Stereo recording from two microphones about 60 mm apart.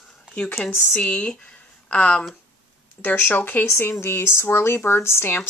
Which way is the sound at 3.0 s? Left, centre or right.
Left.